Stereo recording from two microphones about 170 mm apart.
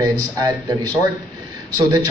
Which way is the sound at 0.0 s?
25° right (ahead or behind).